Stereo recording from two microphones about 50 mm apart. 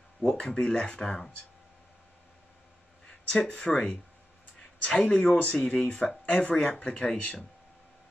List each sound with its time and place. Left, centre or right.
0.2 s speech: centre
3.1 s speech: centre
6.2 s speech: left